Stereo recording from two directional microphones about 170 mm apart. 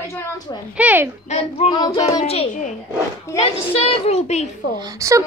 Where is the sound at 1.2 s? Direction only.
40° left (ahead or behind).